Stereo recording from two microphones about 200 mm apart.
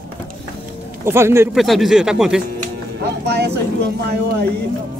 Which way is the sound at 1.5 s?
Centre (ahead or behind).